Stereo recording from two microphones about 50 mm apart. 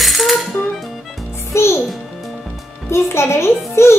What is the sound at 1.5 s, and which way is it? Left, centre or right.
Music, left.